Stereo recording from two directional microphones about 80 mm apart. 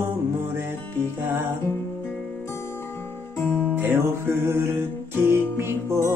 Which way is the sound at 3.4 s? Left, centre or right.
Centre.